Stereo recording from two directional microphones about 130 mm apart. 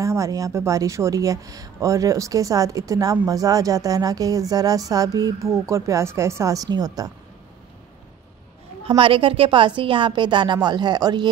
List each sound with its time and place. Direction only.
0.0 s speech: 25° right (ahead or behind)
8.8 s a woman's voice: 45° right (ahead or behind)